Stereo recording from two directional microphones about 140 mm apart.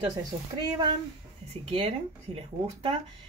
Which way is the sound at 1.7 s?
45° right (ahead or behind).